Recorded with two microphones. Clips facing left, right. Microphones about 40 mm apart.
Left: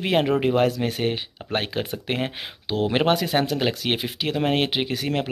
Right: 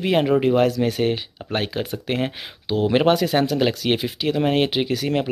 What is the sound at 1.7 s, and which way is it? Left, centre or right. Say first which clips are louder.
Speech: right 2 dB; left.